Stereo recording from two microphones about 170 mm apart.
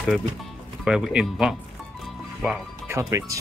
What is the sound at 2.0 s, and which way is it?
Music, centre (ahead or behind).